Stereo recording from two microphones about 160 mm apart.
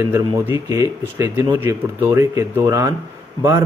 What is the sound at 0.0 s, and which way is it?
Speech, 15° right (ahead or behind).